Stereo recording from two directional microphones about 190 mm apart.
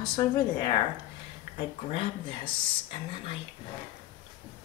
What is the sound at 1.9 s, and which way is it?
Speech, 25° left (ahead or behind).